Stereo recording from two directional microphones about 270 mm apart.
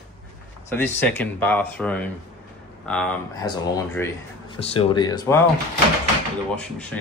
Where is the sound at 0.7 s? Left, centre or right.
Centre.